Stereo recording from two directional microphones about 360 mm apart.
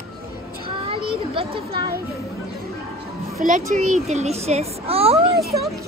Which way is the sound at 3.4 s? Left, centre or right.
Right.